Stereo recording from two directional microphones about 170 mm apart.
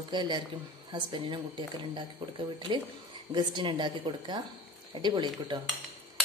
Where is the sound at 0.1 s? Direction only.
25° right (ahead or behind).